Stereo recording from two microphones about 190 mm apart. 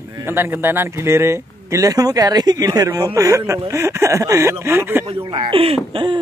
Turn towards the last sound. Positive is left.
turn(degrees=-25)  # may be behind; listen again after turning